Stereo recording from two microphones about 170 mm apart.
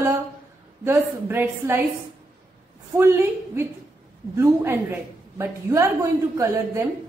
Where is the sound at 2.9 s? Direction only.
15° right (ahead or behind).